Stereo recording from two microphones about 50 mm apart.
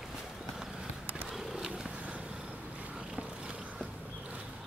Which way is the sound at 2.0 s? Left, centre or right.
Right.